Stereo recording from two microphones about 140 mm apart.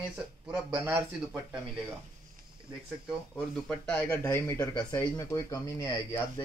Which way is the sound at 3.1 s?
Centre (ahead or behind).